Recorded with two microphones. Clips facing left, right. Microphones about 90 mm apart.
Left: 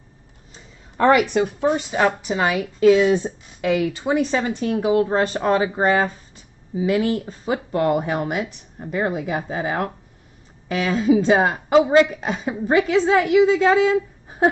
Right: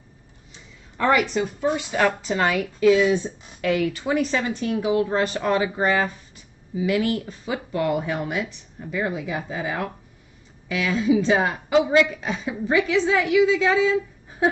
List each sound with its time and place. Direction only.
0.9 s a woman's voice: 45° left (ahead or behind)
1.3 s speech: 60° left (ahead or behind)
1.9 s a woman's voice: 15° left (ahead or behind)
2.8 s speech: 35° left (ahead or behind)
3.6 s a woman's voice: 20° left (ahead or behind); by 13.9 s 50° left (ahead or behind)